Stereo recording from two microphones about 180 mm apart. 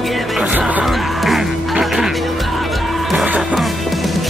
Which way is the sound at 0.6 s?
5° right (ahead or behind).